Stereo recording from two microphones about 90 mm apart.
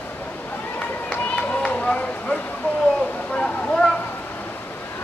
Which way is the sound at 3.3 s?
10° left (ahead or behind).